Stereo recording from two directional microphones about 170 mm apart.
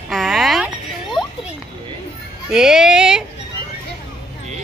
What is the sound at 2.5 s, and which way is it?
Music, 5° right (ahead or behind).